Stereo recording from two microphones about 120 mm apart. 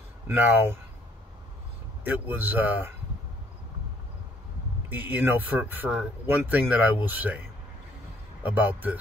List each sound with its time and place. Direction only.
0.3 s speech: 15° right (ahead or behind)
2.0 s speech: 15° right (ahead or behind)
4.8 s speech: 15° right (ahead or behind)